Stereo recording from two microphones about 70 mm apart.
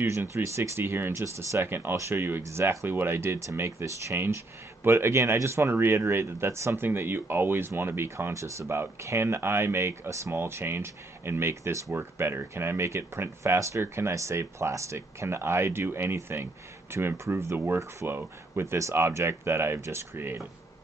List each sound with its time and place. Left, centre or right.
0.0 s speech: right